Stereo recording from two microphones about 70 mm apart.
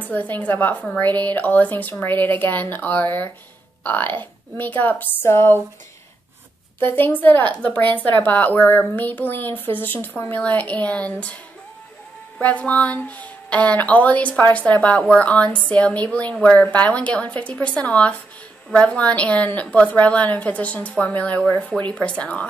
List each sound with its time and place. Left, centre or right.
0.0 s a woman's voice: left
6.8 s a woman's voice: left
12.4 s a woman's voice: left